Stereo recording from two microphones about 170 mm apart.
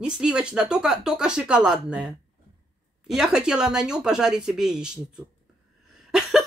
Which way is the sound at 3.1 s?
5° right (ahead or behind).